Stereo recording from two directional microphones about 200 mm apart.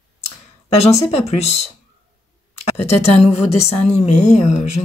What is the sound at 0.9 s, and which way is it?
Speech, 30° left (ahead or behind).